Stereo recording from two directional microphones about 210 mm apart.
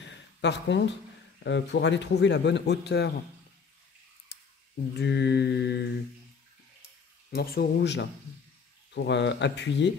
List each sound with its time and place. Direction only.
0.1 s a sound: 55° left (ahead or behind)
1.4 s a man's voice: 55° left (ahead or behind)
4.3 s a sound: 50° left (ahead or behind)
4.9 s mantra: 55° left (ahead or behind)
7.3 s mantra: 50° left (ahead or behind)
8.9 s a man's voice: 55° left (ahead or behind)